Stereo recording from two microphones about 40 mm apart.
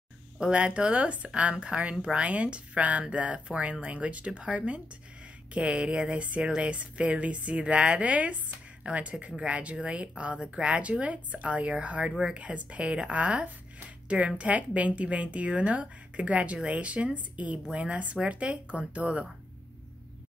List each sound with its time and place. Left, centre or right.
0.5 s speech: right
8.0 s speech: right
10.6 s speech: right